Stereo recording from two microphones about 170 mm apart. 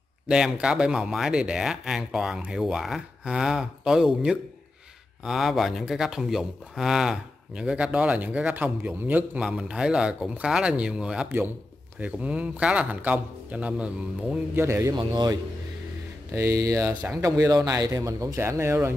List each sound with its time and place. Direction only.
0.3 s a man's voice: 5° right (ahead or behind)
15.0 s speech: 25° right (ahead or behind)
16.3 s a man's voice: 15° right (ahead or behind)